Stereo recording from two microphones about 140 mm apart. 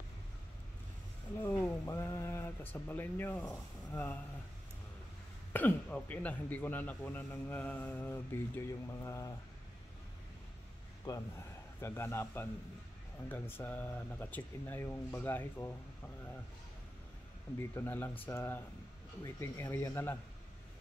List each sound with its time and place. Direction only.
1.4 s speech: 15° left (ahead or behind)
5.5 s a man's voice: 10° left (ahead or behind)
11.1 s a man's voice: 20° left (ahead or behind)
17.7 s a man's voice: 15° left (ahead or behind)